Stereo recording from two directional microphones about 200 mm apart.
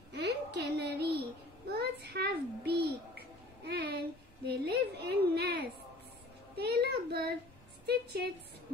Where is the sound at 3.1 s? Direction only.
55° right (ahead or behind).